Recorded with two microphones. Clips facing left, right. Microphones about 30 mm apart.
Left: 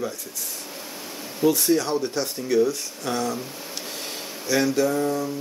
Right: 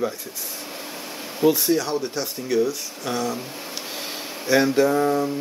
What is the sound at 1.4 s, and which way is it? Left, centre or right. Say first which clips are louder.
Speech: right 1 dB; centre.